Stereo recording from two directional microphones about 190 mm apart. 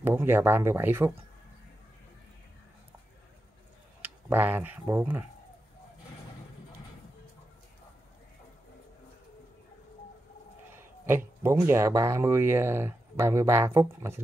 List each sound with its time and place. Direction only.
0.0 s speech: 10° right (ahead or behind)
4.0 s speech: 10° right (ahead or behind)
10.8 s speech: 10° right (ahead or behind)